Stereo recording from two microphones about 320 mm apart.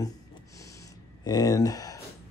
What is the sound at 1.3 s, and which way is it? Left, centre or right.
Speech, centre.